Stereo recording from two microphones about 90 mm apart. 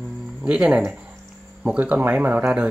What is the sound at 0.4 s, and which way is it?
Speech, 15° right (ahead or behind).